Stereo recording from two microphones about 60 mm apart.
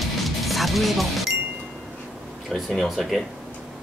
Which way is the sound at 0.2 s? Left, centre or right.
Centre.